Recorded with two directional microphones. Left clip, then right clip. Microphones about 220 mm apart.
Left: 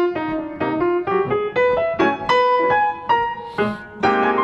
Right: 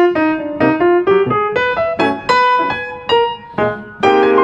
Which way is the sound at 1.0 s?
45° right (ahead or behind).